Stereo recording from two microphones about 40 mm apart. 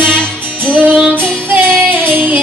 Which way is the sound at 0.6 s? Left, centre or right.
Right.